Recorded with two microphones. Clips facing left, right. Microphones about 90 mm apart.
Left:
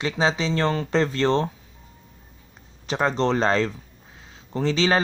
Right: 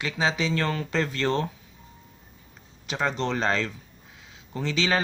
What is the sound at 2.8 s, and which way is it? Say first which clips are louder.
Speech: left 5 dB; 35° left (ahead or behind).